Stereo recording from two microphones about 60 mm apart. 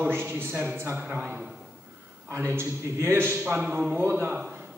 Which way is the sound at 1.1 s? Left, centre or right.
Right.